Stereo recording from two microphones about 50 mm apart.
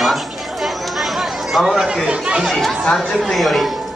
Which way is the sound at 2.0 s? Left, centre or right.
Right.